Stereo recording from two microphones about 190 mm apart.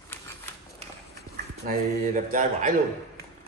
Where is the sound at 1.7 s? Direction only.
45° right (ahead or behind).